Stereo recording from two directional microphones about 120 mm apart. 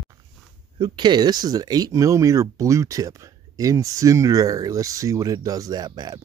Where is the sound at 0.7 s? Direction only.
40° right (ahead or behind).